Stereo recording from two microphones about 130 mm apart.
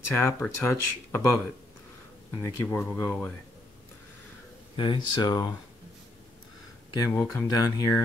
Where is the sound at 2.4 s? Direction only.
15° left (ahead or behind).